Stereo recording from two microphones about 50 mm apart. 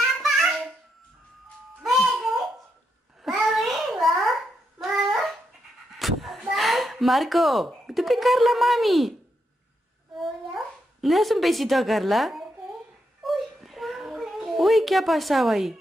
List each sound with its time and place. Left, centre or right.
1.9 s music: centre
3.3 s babbling: centre
4.9 s dog: centre
5.9 s a sound: centre
10.1 s dog: centre
13.2 s a sound: centre